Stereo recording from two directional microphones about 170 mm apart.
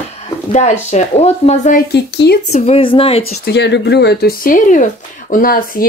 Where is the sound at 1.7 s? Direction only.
80° left.